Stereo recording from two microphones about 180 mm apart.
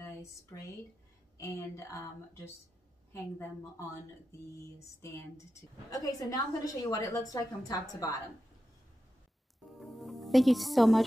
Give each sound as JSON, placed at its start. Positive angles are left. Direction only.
{"t": 0.0, "sound": "a sound", "side_deg": 15}
{"t": 1.4, "sound": "a woman's voice", "side_deg": 15}
{"t": 9.8, "sound": "speech", "side_deg": 0}